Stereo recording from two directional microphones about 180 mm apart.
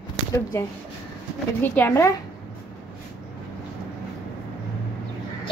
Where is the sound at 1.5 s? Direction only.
10° left (ahead or behind).